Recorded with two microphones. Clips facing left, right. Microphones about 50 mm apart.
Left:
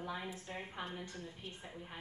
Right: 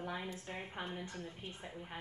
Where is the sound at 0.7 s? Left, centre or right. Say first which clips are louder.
Right 1 dB; right.